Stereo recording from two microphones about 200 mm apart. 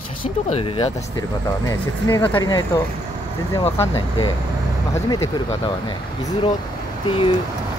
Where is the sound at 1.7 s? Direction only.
15° left (ahead or behind).